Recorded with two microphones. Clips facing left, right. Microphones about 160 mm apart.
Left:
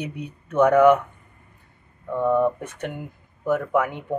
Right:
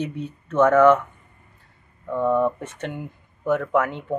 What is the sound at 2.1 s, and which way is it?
Speech, 15° left (ahead or behind).